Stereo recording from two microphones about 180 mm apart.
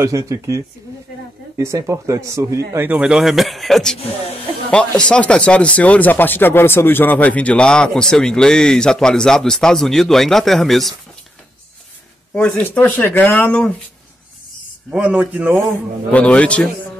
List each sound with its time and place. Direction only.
0.0 s speech: 15° right (ahead or behind); by 11.0 s centre (ahead or behind)
12.4 s speech: 5° left (ahead or behind)
14.9 s speech: 5° right (ahead or behind)